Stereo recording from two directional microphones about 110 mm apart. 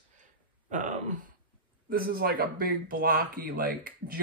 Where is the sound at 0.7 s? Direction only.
90° right.